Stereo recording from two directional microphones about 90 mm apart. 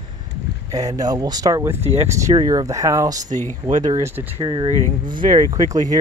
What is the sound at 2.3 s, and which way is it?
Speech, 45° right (ahead or behind).